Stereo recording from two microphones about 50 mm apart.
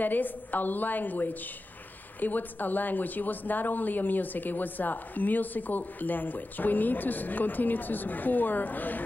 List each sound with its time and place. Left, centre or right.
0.0 s speech: left